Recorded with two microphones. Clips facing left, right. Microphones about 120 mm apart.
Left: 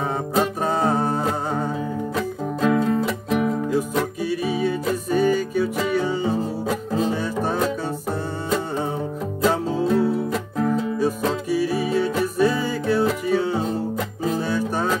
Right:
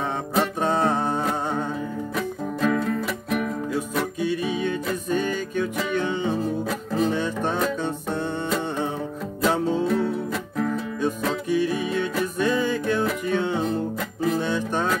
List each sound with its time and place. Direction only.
0.4 s music: 10° left (ahead or behind)
2.6 s music: 20° left (ahead or behind)
3.7 s music: 10° left (ahead or behind)
9.8 s music: 10° left (ahead or behind)